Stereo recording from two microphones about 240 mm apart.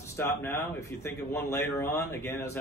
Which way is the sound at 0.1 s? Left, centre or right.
Centre.